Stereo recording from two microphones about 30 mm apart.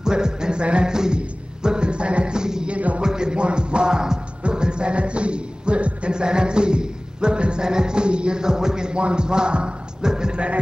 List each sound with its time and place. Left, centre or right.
0.0 s music: right
0.8 s music: right
2.3 s music: right
6.1 s music: right
9.0 s speech: right
10.3 s speech: right